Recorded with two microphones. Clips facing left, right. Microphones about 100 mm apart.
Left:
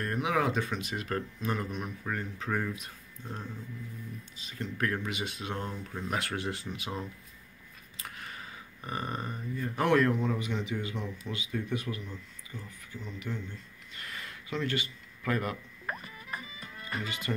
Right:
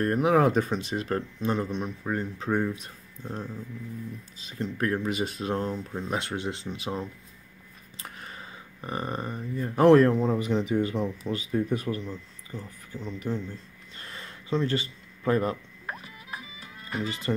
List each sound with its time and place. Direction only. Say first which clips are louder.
0.0 s speech: right 8 dB; 35° right (ahead or behind)
15.9 s music: even; 5° right (ahead or behind)
17.0 s speech: right 6 dB; 35° right (ahead or behind)